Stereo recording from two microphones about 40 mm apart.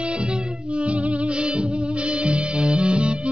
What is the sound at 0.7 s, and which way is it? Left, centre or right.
Music, right.